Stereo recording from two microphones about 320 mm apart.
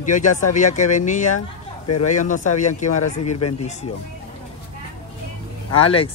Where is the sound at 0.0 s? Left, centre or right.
Left.